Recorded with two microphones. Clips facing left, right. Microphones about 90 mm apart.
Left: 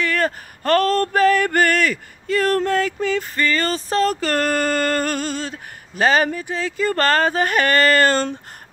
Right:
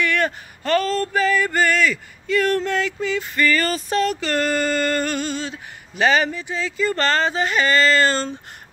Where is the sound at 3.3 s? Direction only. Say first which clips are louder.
Right 1 dB; 30° left (ahead or behind).